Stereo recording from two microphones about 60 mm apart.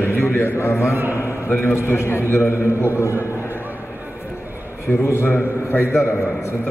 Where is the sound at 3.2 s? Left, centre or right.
Left.